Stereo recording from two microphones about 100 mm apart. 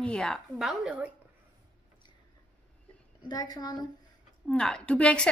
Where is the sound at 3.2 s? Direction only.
40° left (ahead or behind).